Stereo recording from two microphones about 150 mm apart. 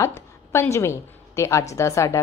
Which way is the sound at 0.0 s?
20° left (ahead or behind).